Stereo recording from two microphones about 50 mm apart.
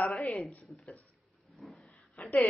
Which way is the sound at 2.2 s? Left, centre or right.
Left.